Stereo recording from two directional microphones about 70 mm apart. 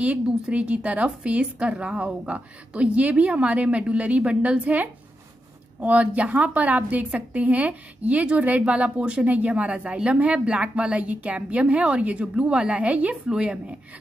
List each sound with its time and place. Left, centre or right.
0.0 s a woman's voice: centre